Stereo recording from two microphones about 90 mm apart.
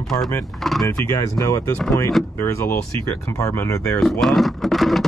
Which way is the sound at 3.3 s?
35° left (ahead or behind).